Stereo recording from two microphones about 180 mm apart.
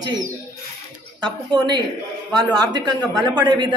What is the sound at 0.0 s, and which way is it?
A child's voice, 25° right (ahead or behind).